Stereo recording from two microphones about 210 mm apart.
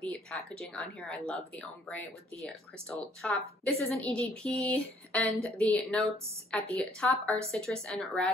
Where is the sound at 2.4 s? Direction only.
Centre (ahead or behind).